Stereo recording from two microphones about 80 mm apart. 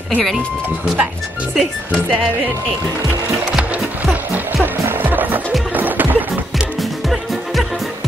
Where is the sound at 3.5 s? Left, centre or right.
Centre.